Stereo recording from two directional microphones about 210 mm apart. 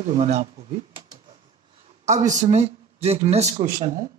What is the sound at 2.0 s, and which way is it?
Speech, 35° right (ahead or behind).